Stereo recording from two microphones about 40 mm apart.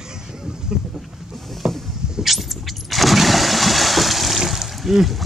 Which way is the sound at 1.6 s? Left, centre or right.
Centre.